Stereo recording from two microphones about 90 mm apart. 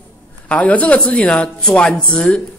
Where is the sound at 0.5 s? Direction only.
15° left (ahead or behind).